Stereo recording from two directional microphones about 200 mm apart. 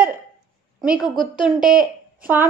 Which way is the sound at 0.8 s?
5° right (ahead or behind).